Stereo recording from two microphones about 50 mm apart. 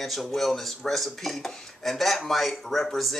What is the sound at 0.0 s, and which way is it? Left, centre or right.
Speech, centre.